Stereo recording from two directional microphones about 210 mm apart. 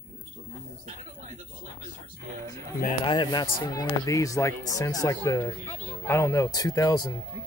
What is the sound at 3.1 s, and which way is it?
Speech, 20° left (ahead or behind).